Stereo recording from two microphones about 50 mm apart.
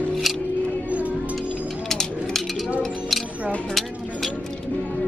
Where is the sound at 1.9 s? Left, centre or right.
Centre.